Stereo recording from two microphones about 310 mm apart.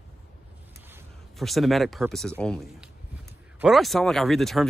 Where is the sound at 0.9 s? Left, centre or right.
Centre.